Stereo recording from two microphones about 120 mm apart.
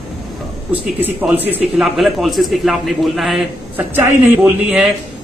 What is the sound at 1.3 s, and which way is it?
A man's voice, 15° right (ahead or behind).